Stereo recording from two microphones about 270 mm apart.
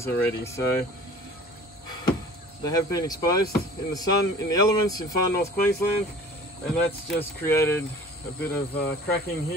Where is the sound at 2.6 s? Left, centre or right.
Centre.